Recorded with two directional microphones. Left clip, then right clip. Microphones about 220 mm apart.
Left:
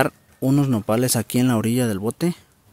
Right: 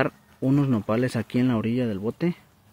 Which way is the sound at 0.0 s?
15° left (ahead or behind).